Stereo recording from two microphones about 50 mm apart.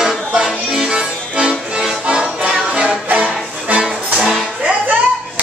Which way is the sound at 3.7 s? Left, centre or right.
Right.